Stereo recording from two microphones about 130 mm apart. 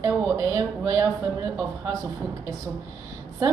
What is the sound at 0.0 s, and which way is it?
Speech, 25° right (ahead or behind).